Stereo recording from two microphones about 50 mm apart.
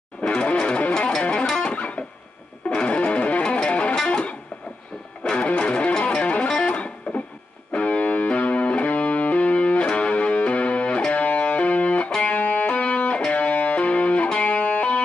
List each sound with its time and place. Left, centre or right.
0.3 s music: left
1.6 s guitar: left
2.7 s music: left